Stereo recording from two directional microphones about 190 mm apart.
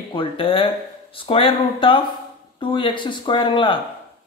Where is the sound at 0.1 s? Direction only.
25° left (ahead or behind).